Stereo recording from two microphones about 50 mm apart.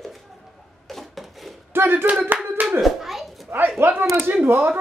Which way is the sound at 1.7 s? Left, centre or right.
Right.